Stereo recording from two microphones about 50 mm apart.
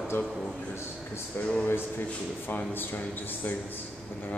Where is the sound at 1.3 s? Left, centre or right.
Left.